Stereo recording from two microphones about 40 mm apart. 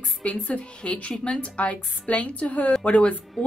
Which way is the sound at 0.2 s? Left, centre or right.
Left.